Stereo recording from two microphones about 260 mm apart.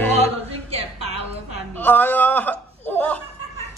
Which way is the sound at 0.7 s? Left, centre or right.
Right.